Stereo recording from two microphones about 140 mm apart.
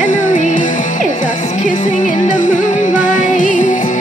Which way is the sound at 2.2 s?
65° left (ahead or behind).